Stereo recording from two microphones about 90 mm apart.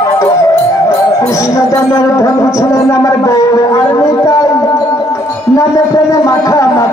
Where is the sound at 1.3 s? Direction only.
35° left (ahead or behind).